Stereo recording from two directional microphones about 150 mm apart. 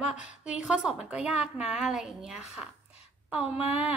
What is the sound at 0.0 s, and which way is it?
A woman's voice, 5° right (ahead or behind).